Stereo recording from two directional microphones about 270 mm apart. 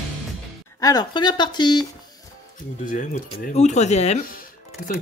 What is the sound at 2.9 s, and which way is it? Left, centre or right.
Speech, left.